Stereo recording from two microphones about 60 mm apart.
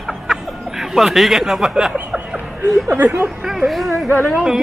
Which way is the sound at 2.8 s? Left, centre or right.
Right.